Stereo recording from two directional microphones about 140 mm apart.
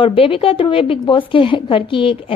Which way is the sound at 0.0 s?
40° left (ahead or behind).